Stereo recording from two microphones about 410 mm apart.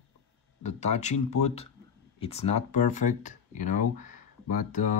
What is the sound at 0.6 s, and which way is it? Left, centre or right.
Speech, centre.